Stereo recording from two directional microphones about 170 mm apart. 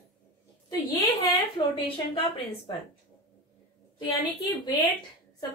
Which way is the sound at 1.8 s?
30° left (ahead or behind).